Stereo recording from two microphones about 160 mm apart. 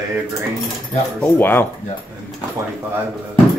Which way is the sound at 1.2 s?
10° left (ahead or behind).